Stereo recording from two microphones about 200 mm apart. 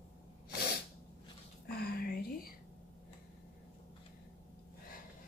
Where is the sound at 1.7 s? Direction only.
50° left (ahead or behind).